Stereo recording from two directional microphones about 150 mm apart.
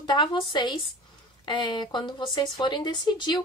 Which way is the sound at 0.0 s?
30° left (ahead or behind).